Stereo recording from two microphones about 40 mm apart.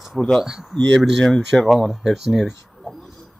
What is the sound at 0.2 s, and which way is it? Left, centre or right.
Speech, left.